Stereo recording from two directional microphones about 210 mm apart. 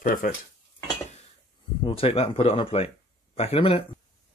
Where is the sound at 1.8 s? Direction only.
25° left (ahead or behind).